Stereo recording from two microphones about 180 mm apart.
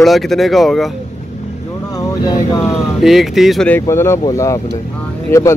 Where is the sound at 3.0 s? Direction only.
Centre (ahead or behind); by 5.5 s 15° left (ahead or behind).